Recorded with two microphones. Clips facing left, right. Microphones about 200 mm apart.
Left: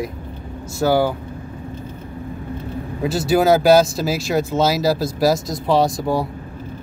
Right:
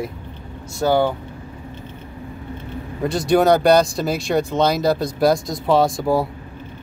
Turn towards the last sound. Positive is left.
turn(degrees=0)  # may be behind; listen again after turning